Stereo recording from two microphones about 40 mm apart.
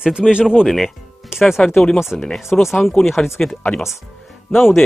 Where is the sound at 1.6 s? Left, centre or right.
Left.